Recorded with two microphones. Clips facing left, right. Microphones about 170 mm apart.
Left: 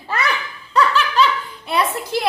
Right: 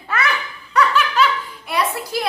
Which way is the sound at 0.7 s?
30° left (ahead or behind).